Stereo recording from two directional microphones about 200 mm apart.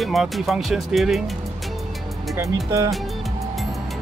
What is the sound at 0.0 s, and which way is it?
Speech, centre (ahead or behind).